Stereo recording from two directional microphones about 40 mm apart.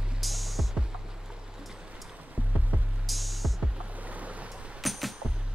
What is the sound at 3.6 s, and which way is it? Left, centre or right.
Music, right.